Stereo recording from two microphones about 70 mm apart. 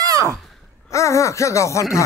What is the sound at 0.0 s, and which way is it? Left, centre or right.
Sigh, right.